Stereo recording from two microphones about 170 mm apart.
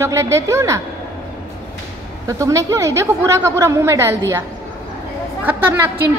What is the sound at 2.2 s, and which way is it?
A woman's voice, 20° right (ahead or behind).